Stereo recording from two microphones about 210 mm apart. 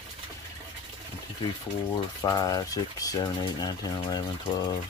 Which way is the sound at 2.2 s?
20° left (ahead or behind).